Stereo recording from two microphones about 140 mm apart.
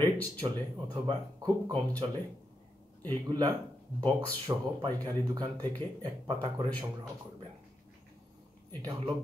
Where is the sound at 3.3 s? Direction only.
30° right (ahead or behind).